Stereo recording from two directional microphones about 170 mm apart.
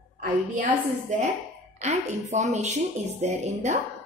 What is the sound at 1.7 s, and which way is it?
A woman's voice, 45° right (ahead or behind).